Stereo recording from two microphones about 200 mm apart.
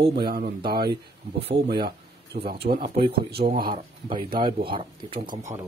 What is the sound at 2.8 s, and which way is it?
Speech, 25° right (ahead or behind).